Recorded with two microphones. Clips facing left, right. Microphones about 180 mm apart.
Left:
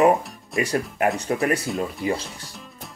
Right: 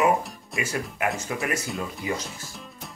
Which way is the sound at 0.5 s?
Centre (ahead or behind).